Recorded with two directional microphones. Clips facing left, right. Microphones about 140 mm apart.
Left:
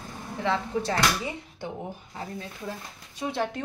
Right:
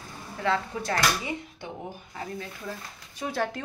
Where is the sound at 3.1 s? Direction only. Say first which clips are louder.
Left 1 dB; 20° left (ahead or behind).